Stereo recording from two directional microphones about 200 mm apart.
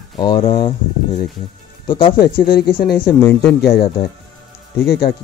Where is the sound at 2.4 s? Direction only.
50° left (ahead or behind).